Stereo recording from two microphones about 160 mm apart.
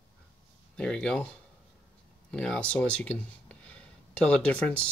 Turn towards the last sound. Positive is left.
turn(degrees=10)  # may be behind; listen again after turning